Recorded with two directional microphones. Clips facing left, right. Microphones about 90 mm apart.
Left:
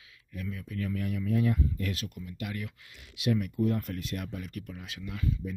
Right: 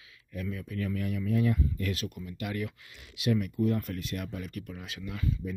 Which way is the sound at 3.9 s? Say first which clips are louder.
Even; 25° left (ahead or behind).